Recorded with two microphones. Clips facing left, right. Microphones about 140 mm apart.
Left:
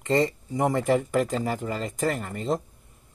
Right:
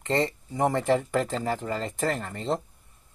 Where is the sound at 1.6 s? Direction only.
25° right (ahead or behind).